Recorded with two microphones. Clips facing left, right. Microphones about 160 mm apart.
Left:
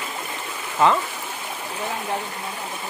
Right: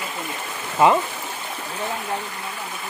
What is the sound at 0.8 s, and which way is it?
Speech, 10° right (ahead or behind).